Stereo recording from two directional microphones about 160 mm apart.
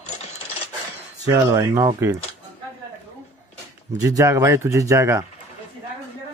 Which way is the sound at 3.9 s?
20° right (ahead or behind).